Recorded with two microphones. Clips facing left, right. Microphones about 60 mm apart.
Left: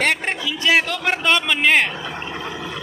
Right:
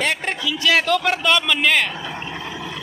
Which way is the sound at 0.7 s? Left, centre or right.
Centre.